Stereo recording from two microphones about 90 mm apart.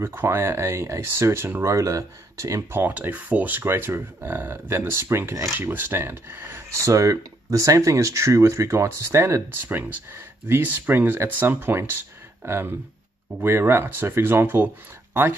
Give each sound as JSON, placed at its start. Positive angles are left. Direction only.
{"t": 0.0, "sound": "speech", "side_deg": -25}
{"t": 5.6, "sound": "speech", "side_deg": -20}